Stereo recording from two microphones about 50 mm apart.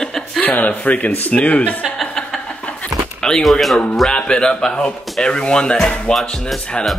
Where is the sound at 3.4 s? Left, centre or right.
Centre.